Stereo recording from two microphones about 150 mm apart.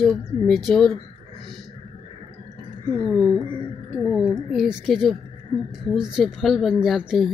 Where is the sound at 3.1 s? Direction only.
5° left (ahead or behind).